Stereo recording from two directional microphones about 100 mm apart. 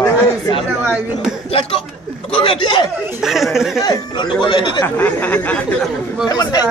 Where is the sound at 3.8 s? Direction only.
45° left (ahead or behind).